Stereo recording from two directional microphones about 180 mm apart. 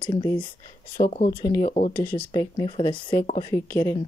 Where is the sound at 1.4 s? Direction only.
25° left (ahead or behind).